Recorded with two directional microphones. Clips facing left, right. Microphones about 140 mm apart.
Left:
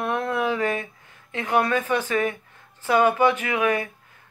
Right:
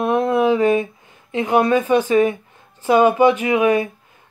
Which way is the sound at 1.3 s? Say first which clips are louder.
Right 6 dB; 20° right (ahead or behind).